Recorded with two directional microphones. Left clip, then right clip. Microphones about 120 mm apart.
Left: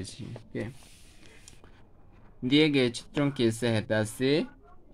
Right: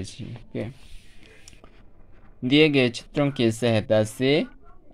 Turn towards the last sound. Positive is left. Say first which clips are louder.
# right 6 dB
turn(degrees=-25)  # may be behind; listen again after turning